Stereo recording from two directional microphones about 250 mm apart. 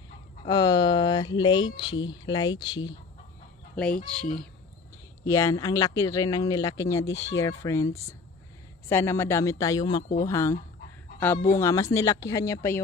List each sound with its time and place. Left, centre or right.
0.5 s speech: centre
3.7 s speech: centre
7.1 s speech: left
7.3 s speech: centre